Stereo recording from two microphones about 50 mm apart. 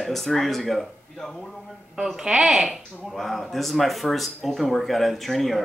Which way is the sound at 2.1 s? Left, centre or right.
Centre.